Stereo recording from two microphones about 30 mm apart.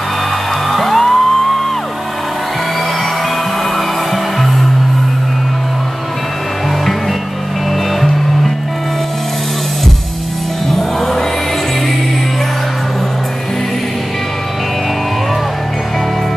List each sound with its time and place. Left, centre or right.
0.7 s music: centre
3.7 s music: centre
10.7 s music: centre